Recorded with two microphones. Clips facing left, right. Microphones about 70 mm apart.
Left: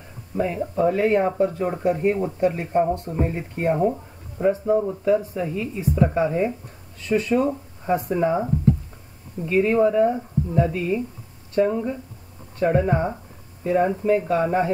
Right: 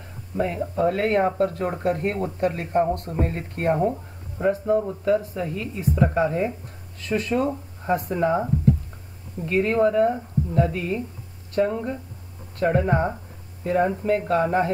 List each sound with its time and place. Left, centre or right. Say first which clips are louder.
0.4 s speech: left 1 dB; centre
3.7 s a sound: left 1 dB; centre
4.5 s speech: left 1 dB; centre
6.0 s speech: even; centre
7.1 s speech: left 3 dB; centre
9.5 s speech: left 2 dB; centre
12.8 s speech: even; centre
13.7 s speech: left 2 dB; centre